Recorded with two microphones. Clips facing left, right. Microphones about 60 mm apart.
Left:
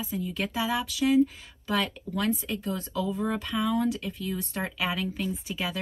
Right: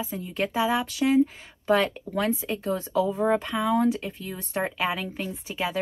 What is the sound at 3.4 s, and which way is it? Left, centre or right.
A woman's voice, centre.